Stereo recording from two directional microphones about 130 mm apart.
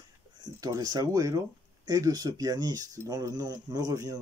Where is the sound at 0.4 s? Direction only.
30° right (ahead or behind).